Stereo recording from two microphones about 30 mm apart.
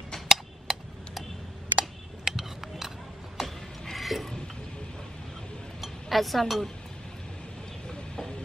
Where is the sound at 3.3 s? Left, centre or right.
Centre.